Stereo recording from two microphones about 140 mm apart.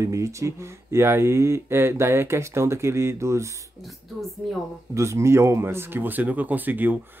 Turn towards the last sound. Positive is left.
turn(degrees=-15)  # may be behind; listen again after turning